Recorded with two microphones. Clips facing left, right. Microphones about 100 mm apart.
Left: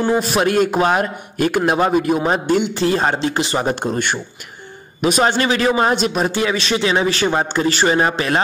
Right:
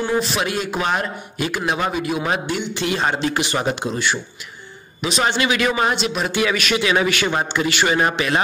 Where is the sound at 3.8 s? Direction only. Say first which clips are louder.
Left 2 dB; 50° left (ahead or behind).